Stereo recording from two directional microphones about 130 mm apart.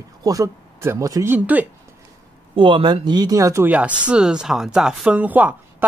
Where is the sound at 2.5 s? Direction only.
40° right (ahead or behind); by 3.7 s 20° right (ahead or behind).